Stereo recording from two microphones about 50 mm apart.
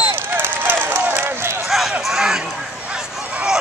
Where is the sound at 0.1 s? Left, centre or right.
Right.